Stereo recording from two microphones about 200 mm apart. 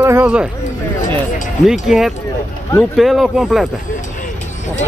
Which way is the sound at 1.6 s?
Centre (ahead or behind).